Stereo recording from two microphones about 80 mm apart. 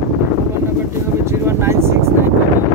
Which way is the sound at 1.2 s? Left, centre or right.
Right.